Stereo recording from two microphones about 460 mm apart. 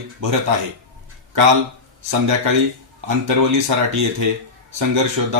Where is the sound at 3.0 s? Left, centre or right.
Right.